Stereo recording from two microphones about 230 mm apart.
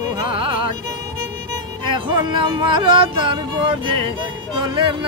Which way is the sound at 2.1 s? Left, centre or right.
Centre.